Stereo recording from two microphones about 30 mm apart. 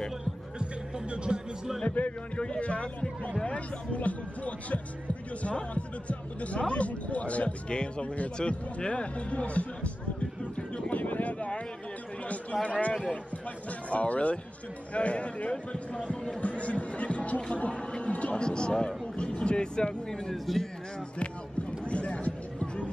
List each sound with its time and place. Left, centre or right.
0.6 s music: right
1.9 s speech: left
2.3 s speech: left
2.6 s speech: left
5.4 s speech: left
7.7 s speech: left
10.9 s a sound: left
11.3 s a sound: left
12.6 s speech: left
18.4 s speech: left
20.5 s speech: centre
21.2 s a sound: left